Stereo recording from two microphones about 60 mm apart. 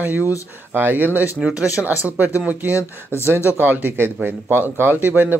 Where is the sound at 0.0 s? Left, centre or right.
Right.